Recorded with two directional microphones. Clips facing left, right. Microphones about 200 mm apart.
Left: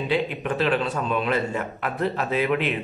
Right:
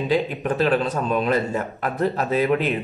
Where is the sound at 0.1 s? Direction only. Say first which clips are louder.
Right 2 dB; 40° right (ahead or behind).